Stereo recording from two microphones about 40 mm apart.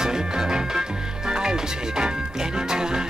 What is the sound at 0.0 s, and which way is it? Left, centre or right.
Music, centre.